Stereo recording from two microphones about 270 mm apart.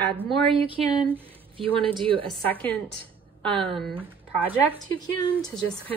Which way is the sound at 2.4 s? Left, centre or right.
Centre.